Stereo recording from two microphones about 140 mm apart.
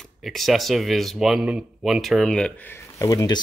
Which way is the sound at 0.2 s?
Centre (ahead or behind).